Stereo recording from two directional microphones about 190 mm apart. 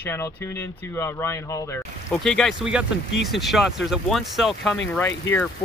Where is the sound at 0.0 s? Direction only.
15° left (ahead or behind).